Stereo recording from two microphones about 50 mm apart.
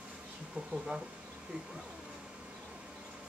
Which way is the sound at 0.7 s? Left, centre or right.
Centre.